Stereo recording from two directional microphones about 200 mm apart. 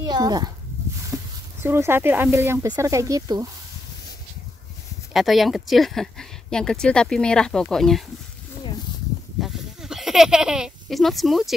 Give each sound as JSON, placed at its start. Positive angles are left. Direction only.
{"t": 0.0, "sound": "speech", "side_deg": -20}
{"t": 5.1, "sound": "speech", "side_deg": 0}
{"t": 9.4, "sound": "a sound", "side_deg": 0}